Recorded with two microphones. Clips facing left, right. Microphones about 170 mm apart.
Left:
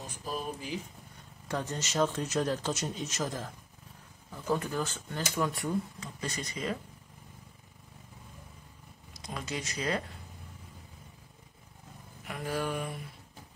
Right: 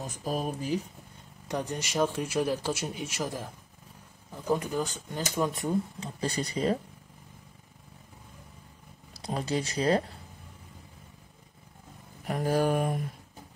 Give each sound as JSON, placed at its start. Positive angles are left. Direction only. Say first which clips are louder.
{"t": 0.0, "sound": "speech", "louder": "right 5 dB", "side_deg": -45}
{"t": 1.5, "sound": "speech", "louder": "right 2 dB", "side_deg": -15}
{"t": 9.1, "sound": "speech", "louder": "right 7 dB", "side_deg": -35}
{"t": 12.3, "sound": "speech", "louder": "right 8 dB", "side_deg": -40}